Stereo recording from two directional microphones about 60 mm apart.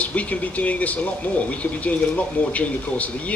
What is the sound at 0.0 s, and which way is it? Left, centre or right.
Speech, left.